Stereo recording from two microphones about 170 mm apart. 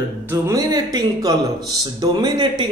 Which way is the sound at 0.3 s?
20° right (ahead or behind).